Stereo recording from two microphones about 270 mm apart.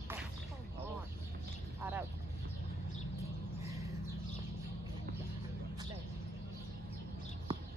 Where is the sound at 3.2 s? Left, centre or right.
Centre.